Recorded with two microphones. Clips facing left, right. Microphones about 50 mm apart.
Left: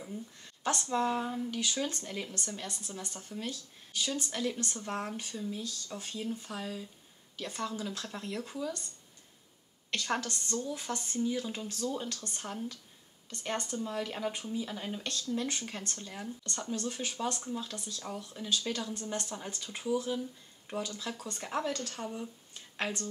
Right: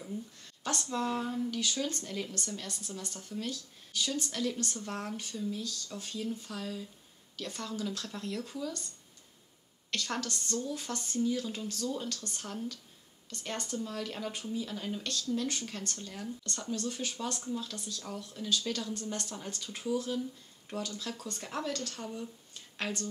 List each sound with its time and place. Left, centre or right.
0.0 s speech: left
9.8 s speech: centre